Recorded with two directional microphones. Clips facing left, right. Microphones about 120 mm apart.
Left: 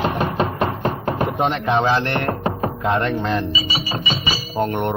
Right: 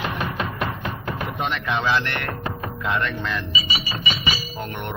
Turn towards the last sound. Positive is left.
turn(degrees=40)  # may be behind; listen again after turning